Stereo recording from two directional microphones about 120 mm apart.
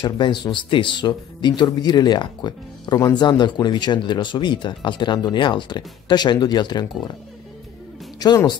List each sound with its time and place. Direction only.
0.0 s speech: 40° left (ahead or behind)
8.2 s speech: 35° left (ahead or behind)